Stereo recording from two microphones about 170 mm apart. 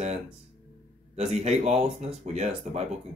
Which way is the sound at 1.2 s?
40° right (ahead or behind).